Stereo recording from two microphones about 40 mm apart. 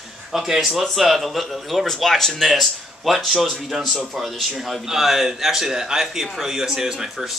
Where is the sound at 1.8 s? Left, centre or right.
Centre.